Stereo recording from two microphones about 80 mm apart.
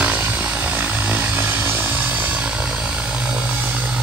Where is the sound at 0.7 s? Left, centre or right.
Centre.